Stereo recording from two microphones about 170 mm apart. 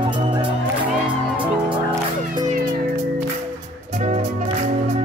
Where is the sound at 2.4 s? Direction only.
50° right (ahead or behind).